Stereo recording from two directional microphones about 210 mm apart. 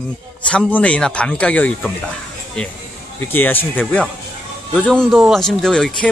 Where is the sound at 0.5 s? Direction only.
5° left (ahead or behind).